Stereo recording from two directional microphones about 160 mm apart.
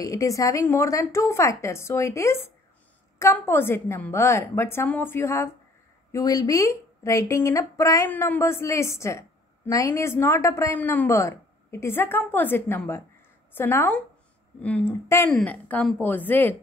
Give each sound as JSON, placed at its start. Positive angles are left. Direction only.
{"t": 0.0, "sound": "a woman's voice", "side_deg": 20}